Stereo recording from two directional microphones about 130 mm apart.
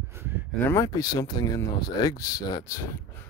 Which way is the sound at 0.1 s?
20° right (ahead or behind).